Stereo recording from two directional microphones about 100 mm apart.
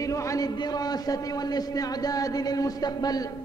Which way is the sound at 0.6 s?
40° left (ahead or behind).